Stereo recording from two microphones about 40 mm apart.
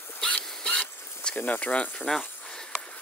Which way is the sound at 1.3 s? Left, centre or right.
Left.